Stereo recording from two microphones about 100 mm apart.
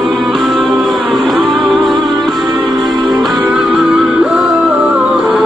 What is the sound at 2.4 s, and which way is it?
Music, 45° right (ahead or behind).